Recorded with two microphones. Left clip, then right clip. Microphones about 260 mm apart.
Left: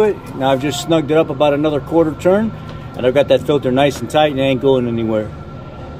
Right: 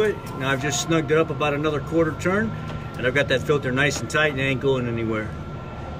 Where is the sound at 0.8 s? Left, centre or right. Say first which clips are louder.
Left 7 dB; left.